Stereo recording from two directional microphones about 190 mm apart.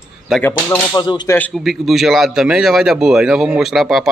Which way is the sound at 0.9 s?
20° left (ahead or behind).